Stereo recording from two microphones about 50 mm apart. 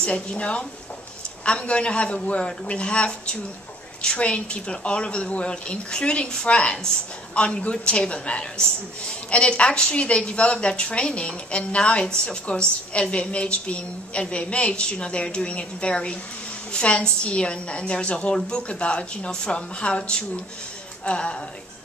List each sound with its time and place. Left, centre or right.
0.0 s a woman's voice: left